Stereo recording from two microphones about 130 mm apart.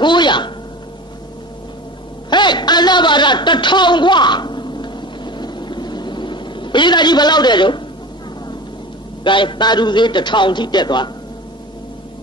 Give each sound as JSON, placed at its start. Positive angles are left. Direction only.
{"t": 0.0, "sound": "a man's voice", "side_deg": 35}
{"t": 2.2, "sound": "a sound", "side_deg": 35}
{"t": 9.2, "sound": "a man's voice", "side_deg": 40}